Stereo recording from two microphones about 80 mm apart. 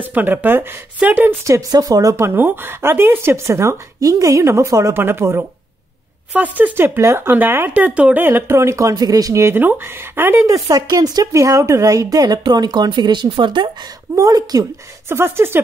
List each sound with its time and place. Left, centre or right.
0.1 s speech: right
1.4 s speech: right
2.1 s speech: right
4.9 s speech: right
6.3 s speech: right
7.0 s speech: right
9.6 s speech: right
10.4 s speech: right
11.3 s speech: right
14.1 s speech: right
15.0 s speech: right